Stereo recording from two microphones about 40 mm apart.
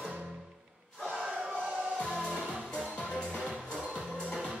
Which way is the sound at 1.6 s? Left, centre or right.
Centre.